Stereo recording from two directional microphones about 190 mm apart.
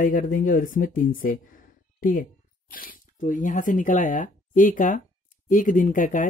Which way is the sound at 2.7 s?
45° left (ahead or behind).